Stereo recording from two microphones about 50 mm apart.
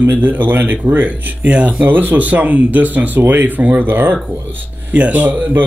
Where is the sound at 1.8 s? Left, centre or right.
Right.